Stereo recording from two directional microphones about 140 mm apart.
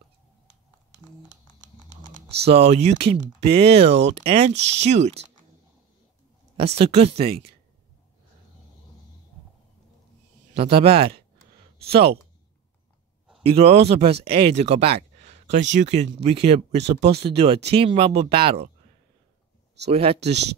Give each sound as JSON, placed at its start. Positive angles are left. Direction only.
{"t": 2.2, "sound": "speech", "side_deg": -45}
{"t": 6.5, "sound": "speech", "side_deg": -45}
{"t": 10.5, "sound": "speech", "side_deg": -45}
{"t": 13.4, "sound": "speech", "side_deg": -45}
{"t": 19.9, "sound": "speech", "side_deg": -45}